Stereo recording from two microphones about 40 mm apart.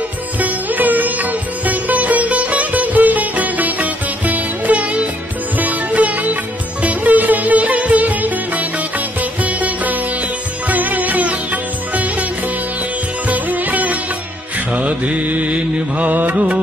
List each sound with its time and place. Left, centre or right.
0.4 s music: right
13.3 s music: right
14.7 s mantra: right